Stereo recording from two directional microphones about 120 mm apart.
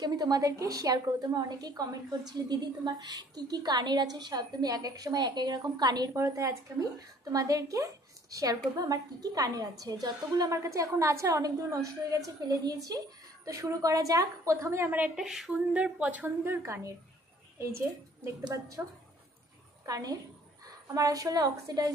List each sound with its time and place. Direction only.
0.0 s a woman's voice: 35° right (ahead or behind)
6.1 s a woman's voice: 25° right (ahead or behind)
15.1 s speech: 5° right (ahead or behind)
16.6 s a woman's voice: 25° right (ahead or behind)
18.2 s a woman's voice: 25° right (ahead or behind)
19.9 s a woman's voice: 30° right (ahead or behind)